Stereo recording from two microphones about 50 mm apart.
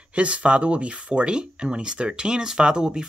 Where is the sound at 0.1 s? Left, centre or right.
Right.